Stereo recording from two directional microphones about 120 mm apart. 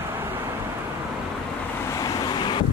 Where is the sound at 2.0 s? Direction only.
30° left (ahead or behind).